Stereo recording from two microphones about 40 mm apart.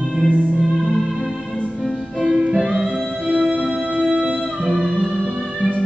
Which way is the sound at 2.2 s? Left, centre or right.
Right.